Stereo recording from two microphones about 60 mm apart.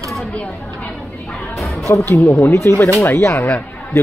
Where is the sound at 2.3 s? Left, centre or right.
Left.